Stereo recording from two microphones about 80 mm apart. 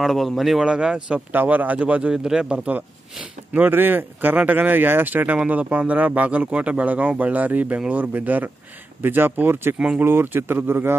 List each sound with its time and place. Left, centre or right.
0.0 s speech: centre
1.3 s a man's voice: right